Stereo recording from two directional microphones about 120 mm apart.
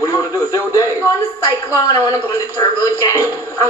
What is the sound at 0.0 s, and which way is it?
Radio, 25° left (ahead or behind).